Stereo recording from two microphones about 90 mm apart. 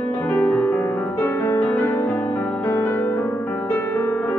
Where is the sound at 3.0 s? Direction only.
30° left (ahead or behind).